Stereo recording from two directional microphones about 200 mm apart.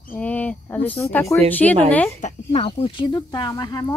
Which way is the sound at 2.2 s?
30° left (ahead or behind).